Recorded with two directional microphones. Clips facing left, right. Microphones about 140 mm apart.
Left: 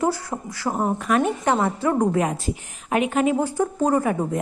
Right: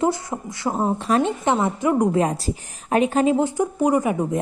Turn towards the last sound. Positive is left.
turn(degrees=-15)  # may be behind; listen again after turning